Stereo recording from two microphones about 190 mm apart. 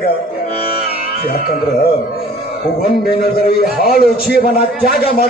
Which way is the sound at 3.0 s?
55° left (ahead or behind).